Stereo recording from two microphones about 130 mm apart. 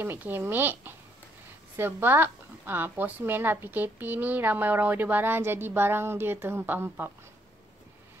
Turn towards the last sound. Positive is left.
turn(degrees=-15)  # may be behind; listen again after turning